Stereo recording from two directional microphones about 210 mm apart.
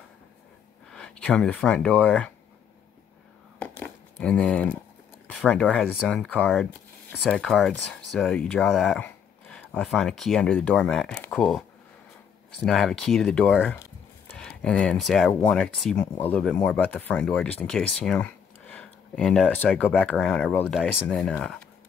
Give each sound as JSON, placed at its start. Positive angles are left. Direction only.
{"t": 0.8, "sound": "speech", "side_deg": 5}
{"t": 3.5, "sound": "a sound", "side_deg": 5}
{"t": 5.3, "sound": "speech", "side_deg": 5}
{"t": 12.6, "sound": "speech", "side_deg": 0}